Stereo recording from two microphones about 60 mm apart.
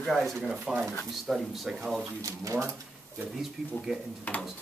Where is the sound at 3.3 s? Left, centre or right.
Centre.